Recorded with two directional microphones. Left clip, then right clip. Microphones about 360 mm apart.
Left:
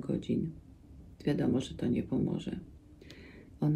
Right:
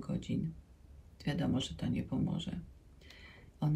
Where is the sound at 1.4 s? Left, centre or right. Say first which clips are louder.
Left 5 dB; left.